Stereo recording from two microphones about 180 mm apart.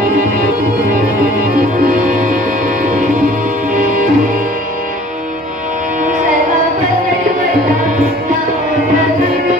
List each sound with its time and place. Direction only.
3.7 s music: 50° right (ahead or behind)